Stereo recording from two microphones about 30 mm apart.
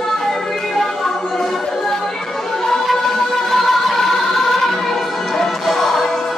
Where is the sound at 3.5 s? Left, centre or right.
Centre.